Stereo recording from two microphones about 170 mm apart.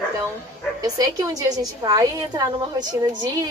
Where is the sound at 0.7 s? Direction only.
20° right (ahead or behind).